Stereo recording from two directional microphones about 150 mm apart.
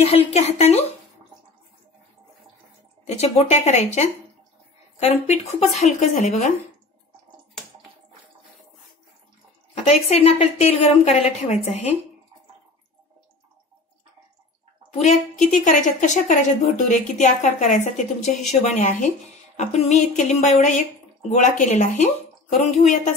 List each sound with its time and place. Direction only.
0.0 s a woman's voice: 40° left (ahead or behind)
3.1 s a woman's voice: 45° left (ahead or behind)
5.8 s a woman's voice: 55° left (ahead or behind)
9.8 s a woman's voice: 45° left (ahead or behind)
15.0 s a woman's voice: 50° left (ahead or behind)